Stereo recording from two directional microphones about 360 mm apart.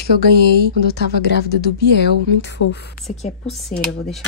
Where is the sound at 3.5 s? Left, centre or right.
Centre.